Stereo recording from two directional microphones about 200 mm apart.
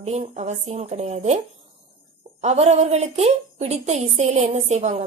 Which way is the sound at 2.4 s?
35° right (ahead or behind).